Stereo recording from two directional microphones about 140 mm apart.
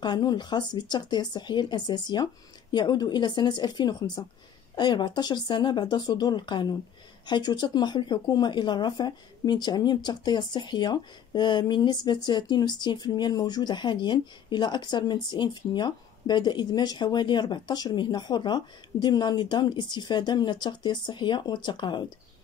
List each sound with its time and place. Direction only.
0.0 s speech: 30° left (ahead or behind)